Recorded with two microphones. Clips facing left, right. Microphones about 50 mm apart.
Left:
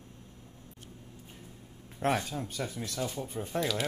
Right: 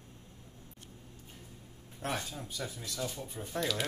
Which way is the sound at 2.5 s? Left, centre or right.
Left.